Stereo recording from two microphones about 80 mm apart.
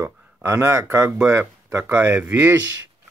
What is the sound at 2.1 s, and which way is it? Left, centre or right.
Speech, centre.